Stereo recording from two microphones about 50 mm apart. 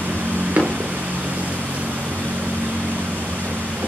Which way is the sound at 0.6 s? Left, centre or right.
Right.